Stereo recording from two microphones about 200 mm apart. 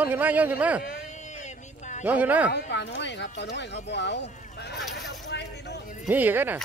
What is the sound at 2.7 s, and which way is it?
A man's voice, 60° left (ahead or behind).